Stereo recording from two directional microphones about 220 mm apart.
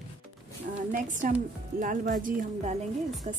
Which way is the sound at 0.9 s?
35° right (ahead or behind).